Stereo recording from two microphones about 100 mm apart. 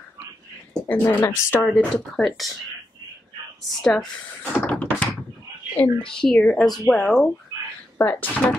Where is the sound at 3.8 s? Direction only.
5° left (ahead or behind).